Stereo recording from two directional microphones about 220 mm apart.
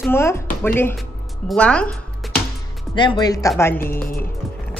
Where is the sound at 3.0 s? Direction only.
20° left (ahead or behind).